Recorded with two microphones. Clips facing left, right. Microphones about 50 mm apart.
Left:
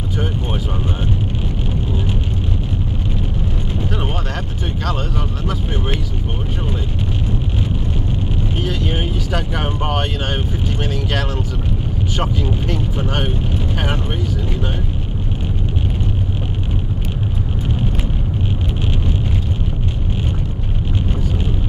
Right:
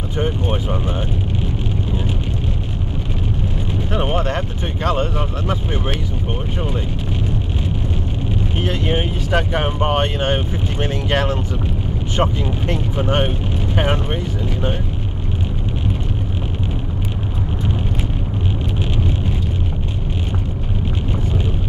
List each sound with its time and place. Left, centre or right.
3.9 s speech: right
8.5 s speech: right